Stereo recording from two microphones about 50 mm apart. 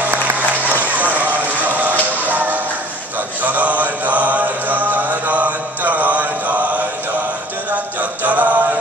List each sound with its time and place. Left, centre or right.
0.0 s a sound: right
3.4 s mantra: right
8.0 s music: right